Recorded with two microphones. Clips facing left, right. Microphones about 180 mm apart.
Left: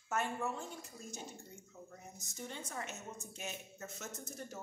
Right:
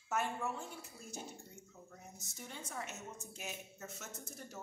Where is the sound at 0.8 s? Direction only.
10° right (ahead or behind).